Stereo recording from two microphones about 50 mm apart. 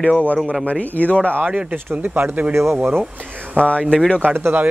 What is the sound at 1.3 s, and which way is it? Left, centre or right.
Speech, right.